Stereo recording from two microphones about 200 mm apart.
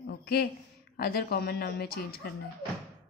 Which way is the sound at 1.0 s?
50° left (ahead or behind).